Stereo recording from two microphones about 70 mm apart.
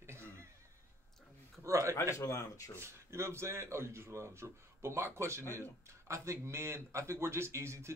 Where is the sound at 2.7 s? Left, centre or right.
Right.